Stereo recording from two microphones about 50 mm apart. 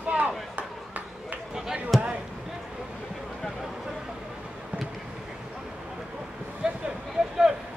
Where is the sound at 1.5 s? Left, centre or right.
Centre.